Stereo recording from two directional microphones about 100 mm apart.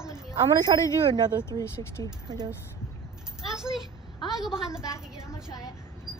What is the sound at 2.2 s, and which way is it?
Speech, 45° right (ahead or behind).